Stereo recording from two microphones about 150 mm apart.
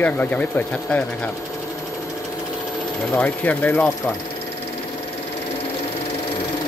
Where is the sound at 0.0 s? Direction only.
10° left (ahead or behind).